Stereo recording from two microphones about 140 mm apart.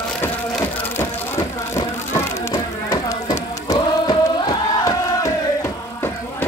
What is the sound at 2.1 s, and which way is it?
Music, 25° left (ahead or behind).